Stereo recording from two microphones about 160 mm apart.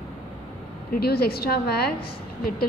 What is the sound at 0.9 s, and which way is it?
A woman's voice, 75° left (ahead or behind).